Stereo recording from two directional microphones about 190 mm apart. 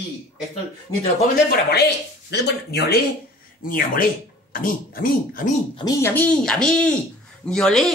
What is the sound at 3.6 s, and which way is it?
Speech, 45° left (ahead or behind).